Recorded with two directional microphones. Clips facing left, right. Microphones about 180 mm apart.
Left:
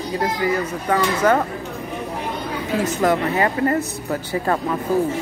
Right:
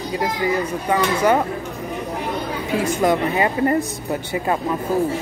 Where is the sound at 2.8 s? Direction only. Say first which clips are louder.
Right 1 dB; 15° right (ahead or behind).